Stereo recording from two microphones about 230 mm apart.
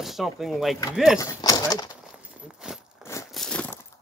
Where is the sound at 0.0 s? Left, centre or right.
Centre.